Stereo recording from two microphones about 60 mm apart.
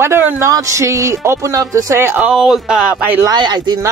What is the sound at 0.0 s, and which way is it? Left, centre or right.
Speech, right.